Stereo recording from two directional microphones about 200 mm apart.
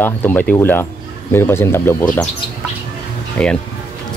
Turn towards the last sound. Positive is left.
turn(degrees=5)  # may be behind; listen again after turning